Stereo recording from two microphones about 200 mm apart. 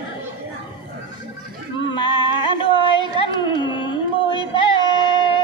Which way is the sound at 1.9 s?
25° left (ahead or behind).